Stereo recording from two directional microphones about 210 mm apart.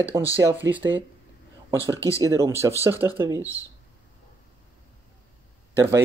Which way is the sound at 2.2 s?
15° right (ahead or behind).